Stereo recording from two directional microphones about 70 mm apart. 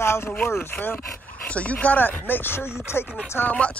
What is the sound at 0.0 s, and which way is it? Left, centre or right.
Speech, left.